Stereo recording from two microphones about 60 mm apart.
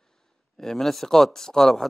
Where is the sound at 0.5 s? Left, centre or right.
Centre.